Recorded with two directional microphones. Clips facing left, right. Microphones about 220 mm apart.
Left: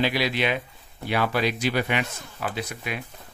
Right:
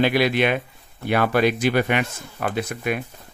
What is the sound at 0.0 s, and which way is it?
Speech, 55° right (ahead or behind).